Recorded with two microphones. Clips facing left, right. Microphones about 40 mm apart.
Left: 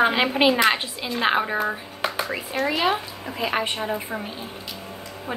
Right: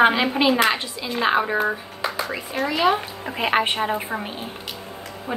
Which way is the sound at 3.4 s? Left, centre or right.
Right.